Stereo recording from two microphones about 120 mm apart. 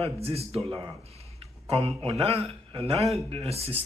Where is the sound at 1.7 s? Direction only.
55° right (ahead or behind).